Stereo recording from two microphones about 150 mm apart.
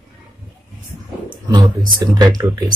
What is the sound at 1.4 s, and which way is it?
Speech, 25° right (ahead or behind).